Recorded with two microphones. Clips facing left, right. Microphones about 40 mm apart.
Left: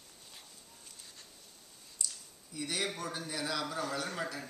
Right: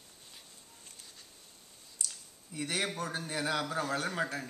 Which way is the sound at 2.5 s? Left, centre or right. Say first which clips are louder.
Right 2 dB; right.